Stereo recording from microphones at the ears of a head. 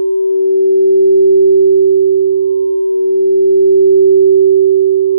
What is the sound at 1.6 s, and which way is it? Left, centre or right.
Sine wave, right.